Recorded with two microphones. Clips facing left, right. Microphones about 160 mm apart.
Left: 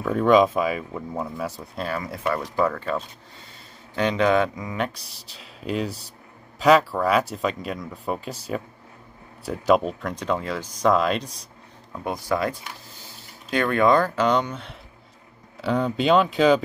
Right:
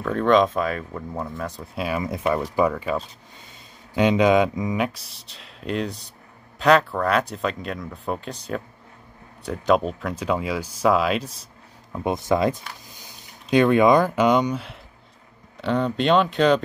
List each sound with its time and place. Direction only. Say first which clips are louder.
0.0 s speech: left 1 dB; 5° left (ahead or behind)
1.9 s speech: right 3 dB; 20° right (ahead or behind)
2.5 s mantra: right 2 dB; 10° right (ahead or behind)
4.7 s speech: right 3 dB; 5° right (ahead or behind)
11.9 s speech: right 4 dB; 20° right (ahead or behind); by 16.6 s centre (ahead or behind)